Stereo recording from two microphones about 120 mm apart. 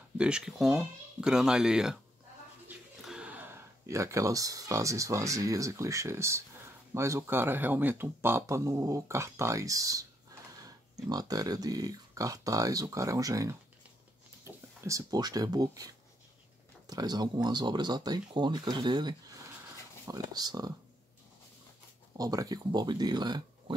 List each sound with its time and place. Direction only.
0.2 s speech: 5° right (ahead or behind)
3.0 s speech: 5° right (ahead or behind); by 10.0 s 30° right (ahead or behind)
11.1 s speech: 30° right (ahead or behind)
22.1 s speech: 30° right (ahead or behind)